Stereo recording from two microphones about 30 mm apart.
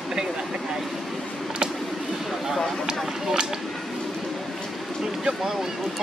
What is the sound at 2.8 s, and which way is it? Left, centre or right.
Speech, right.